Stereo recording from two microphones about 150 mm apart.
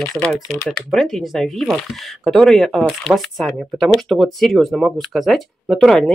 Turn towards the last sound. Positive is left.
turn(degrees=0)  # may be behind; listen again after turning